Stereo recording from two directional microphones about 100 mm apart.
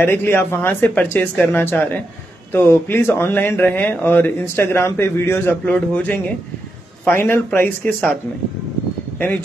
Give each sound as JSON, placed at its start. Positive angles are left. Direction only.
{"t": 0.0, "sound": "speech", "side_deg": 25}